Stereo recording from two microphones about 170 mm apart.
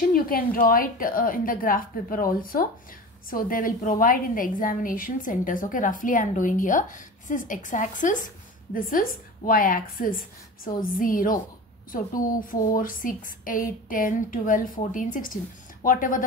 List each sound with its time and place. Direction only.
0.1 s a woman's voice: 60° left (ahead or behind)
9.5 s a woman's voice: 55° left (ahead or behind)